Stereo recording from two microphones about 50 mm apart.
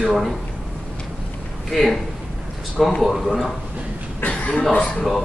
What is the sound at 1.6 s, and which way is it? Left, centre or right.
Speech, centre.